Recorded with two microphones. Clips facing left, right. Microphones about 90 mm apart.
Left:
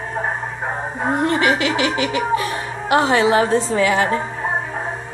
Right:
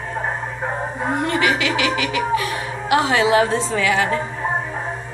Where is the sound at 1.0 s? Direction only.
35° left (ahead or behind).